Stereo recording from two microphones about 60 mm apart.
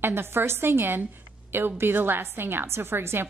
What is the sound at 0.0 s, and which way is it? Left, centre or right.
A woman's voice, right.